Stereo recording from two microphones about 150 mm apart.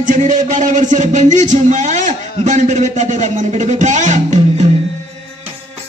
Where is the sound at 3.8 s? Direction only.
55° right (ahead or behind).